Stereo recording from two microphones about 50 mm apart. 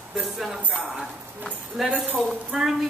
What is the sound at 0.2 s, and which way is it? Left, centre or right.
Speech, centre.